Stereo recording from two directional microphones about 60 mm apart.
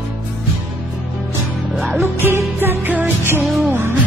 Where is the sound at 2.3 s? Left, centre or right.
Right.